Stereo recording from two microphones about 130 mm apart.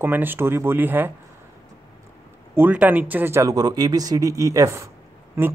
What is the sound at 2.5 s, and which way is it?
Speech, 15° right (ahead or behind).